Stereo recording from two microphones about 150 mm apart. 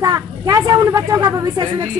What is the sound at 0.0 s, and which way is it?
A woman's voice, 25° right (ahead or behind).